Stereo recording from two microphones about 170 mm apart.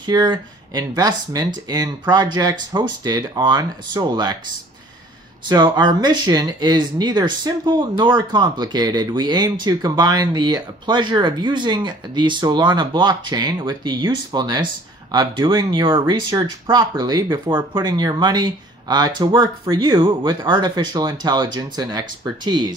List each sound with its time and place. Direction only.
0.0 s speech: 25° right (ahead or behind)
5.5 s speech: 25° right (ahead or behind)